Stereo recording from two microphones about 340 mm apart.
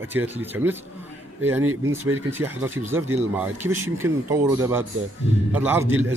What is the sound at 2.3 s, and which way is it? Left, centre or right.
Speech, centre.